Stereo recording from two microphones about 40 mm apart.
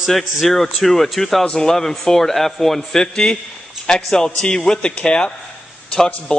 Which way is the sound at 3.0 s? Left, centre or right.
Left.